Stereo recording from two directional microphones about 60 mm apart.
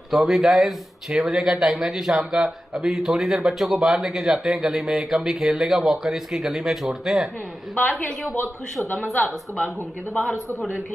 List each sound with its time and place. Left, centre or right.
0.1 s speech: centre
7.7 s a woman's voice: left
8.9 s a woman's voice: centre